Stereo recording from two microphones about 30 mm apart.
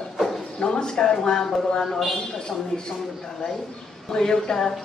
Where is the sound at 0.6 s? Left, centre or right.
Left.